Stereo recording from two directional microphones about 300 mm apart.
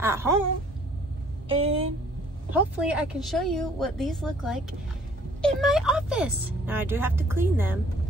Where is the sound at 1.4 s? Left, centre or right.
Centre.